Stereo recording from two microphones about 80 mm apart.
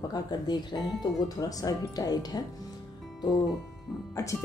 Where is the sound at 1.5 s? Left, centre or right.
Left.